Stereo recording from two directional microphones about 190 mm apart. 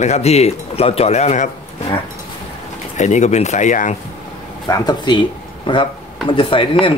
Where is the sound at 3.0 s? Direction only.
40° left (ahead or behind).